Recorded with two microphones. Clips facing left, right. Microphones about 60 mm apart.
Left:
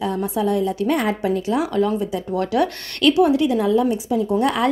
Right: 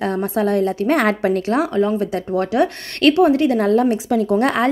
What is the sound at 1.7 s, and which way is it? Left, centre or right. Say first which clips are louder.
Speech: right 2 dB; right.